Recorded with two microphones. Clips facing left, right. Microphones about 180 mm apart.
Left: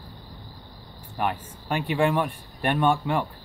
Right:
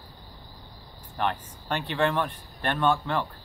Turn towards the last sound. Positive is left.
turn(degrees=15)  # may be behind; listen again after turning